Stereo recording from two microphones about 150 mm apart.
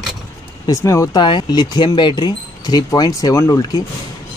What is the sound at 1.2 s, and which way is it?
Speech, 30° left (ahead or behind).